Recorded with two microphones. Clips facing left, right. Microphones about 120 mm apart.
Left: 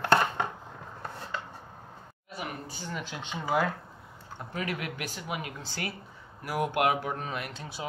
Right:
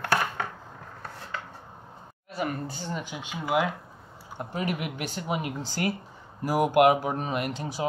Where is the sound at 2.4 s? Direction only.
50° right (ahead or behind).